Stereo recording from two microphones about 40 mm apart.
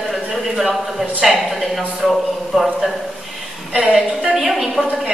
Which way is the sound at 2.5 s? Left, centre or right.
Centre.